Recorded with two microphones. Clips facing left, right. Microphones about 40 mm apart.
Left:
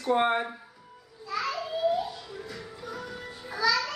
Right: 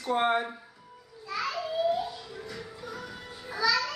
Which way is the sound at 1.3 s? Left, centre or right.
Centre.